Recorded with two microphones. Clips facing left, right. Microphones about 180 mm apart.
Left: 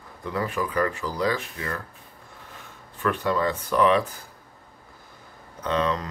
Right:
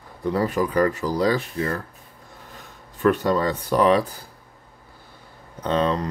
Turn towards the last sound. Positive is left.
turn(degrees=-35)  # may be behind; listen again after turning